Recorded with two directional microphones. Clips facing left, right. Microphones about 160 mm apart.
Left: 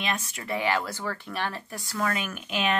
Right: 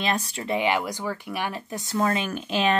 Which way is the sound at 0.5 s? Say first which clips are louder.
Right 3 dB; 20° right (ahead or behind).